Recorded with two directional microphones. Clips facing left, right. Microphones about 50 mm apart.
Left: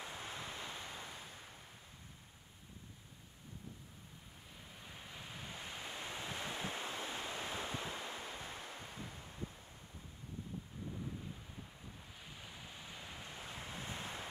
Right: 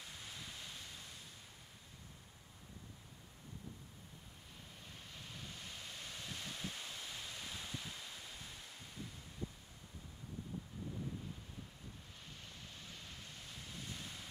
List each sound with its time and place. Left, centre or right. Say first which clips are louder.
0.0 s ocean: left 6 dB; left
4.7 s waves: left 4 dB; centre; by 9.2 s left
12.2 s waves: left 3 dB; centre; by 14.2 s left